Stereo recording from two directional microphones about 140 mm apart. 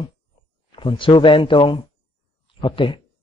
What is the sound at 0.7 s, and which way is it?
Speech, 35° left (ahead or behind).